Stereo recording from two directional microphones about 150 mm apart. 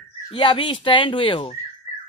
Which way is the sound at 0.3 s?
35° left (ahead or behind).